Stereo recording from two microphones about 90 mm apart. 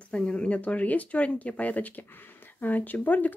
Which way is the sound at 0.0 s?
10° left (ahead or behind).